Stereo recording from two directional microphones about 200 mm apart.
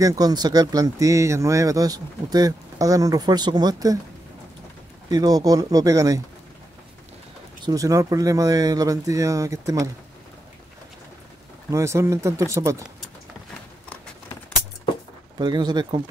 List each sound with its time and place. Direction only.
0.0 s speech: 20° right (ahead or behind)
5.1 s speech: 20° right (ahead or behind)
7.6 s speech: 15° right (ahead or behind)
11.7 s speech: 15° right (ahead or behind)
15.3 s speech: 20° right (ahead or behind)